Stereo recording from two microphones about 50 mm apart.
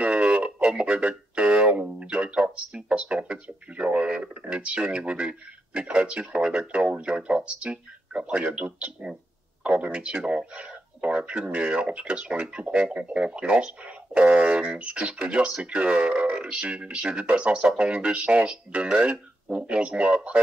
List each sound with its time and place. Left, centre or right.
0.0 s speech: right